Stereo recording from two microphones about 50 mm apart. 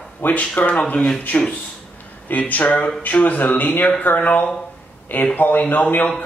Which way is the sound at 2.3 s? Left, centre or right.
Left.